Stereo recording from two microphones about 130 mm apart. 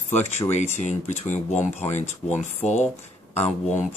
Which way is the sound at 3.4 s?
10° left (ahead or behind).